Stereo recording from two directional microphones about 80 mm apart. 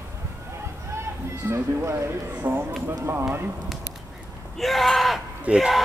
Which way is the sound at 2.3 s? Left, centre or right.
Right.